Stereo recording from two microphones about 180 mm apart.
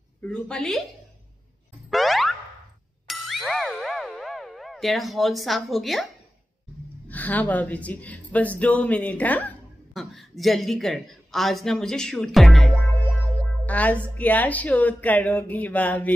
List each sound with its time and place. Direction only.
0.2 s a woman's voice: 5° left (ahead or behind)
1.9 s boing: centre (ahead or behind)
3.1 s ding: centre (ahead or behind)
7.1 s a woman's voice: 10° left (ahead or behind)